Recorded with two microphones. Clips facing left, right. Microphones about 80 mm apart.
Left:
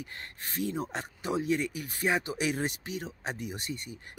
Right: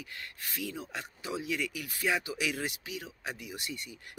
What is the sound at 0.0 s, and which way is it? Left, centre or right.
Speech, left.